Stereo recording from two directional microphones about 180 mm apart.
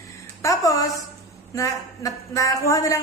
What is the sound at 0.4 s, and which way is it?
A woman's voice, 20° left (ahead or behind).